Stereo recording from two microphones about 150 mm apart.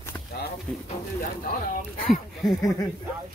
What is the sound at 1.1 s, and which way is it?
Speech, 75° left (ahead or behind).